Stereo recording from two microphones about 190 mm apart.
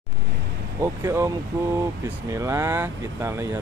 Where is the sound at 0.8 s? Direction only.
15° right (ahead or behind).